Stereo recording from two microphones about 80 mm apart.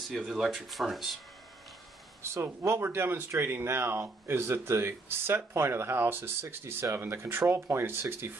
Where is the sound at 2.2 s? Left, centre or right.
Right.